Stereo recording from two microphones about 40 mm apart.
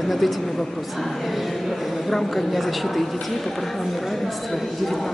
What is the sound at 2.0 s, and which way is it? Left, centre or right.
Speech, centre.